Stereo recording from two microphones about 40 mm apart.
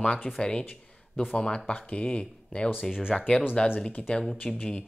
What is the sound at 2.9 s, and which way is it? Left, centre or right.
Speech, centre.